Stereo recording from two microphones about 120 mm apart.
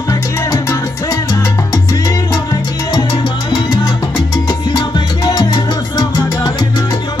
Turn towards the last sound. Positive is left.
turn(degrees=35)  # may be behind; listen again after turning